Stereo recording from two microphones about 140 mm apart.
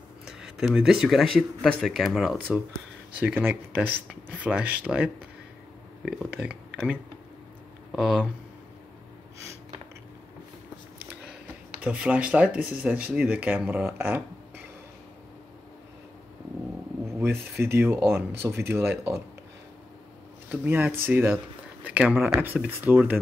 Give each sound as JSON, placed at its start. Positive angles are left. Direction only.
{"t": 0.2, "sound": "speech", "side_deg": -5}
{"t": 3.2, "sound": "speech", "side_deg": -10}
{"t": 6.4, "sound": "speech", "side_deg": -10}
{"t": 11.8, "sound": "speech", "side_deg": -10}
{"t": 17.0, "sound": "speech", "side_deg": -20}
{"t": 20.4, "sound": "speech", "side_deg": -15}